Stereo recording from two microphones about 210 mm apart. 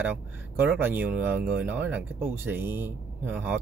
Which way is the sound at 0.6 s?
10° right (ahead or behind).